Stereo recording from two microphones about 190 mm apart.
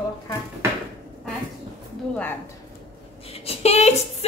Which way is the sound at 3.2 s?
30° left (ahead or behind).